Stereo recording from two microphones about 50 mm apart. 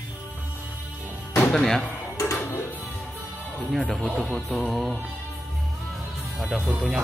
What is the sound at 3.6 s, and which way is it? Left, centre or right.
Speech, centre.